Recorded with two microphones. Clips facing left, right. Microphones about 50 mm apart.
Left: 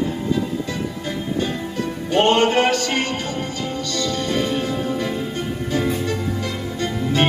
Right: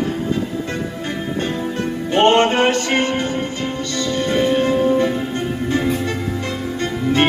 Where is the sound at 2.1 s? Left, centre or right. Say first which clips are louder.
Right 3 dB; right.